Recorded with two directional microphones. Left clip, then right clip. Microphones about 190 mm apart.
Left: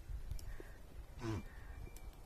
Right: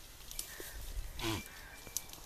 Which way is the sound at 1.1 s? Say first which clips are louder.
Right 7 dB; 60° right (ahead or behind).